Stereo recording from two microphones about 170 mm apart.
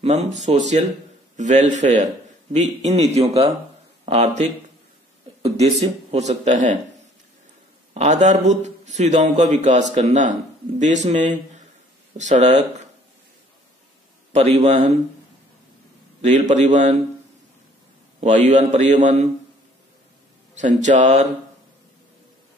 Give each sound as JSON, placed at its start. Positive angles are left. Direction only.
{"t": 0.0, "sound": "a man's voice", "side_deg": -40}
{"t": 4.0, "sound": "a sound", "side_deg": -35}
{"t": 5.4, "sound": "a man's voice", "side_deg": -40}
{"t": 7.9, "sound": "a man's voice", "side_deg": -40}
{"t": 14.3, "sound": "speech", "side_deg": -40}
{"t": 16.2, "sound": "a man's voice", "side_deg": -45}
{"t": 18.2, "sound": "a man's voice", "side_deg": -45}
{"t": 20.5, "sound": "a man's voice", "side_deg": -45}